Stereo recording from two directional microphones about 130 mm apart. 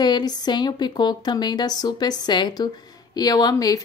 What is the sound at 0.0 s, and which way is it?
A woman's voice, 35° left (ahead or behind).